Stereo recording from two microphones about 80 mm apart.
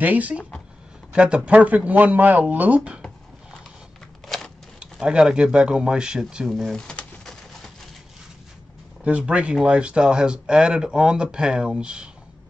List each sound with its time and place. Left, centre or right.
0.0 s speech: centre
4.9 s speech: centre
6.5 s speech: centre
6.9 s pigeon: centre
9.0 s speech: centre